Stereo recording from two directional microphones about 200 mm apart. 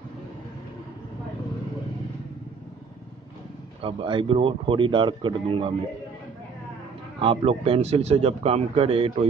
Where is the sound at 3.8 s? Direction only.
25° right (ahead or behind).